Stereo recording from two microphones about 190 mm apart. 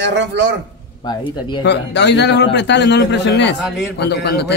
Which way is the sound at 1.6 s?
65° left (ahead or behind).